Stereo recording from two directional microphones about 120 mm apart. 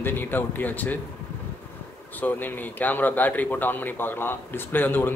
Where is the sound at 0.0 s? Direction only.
15° left (ahead or behind).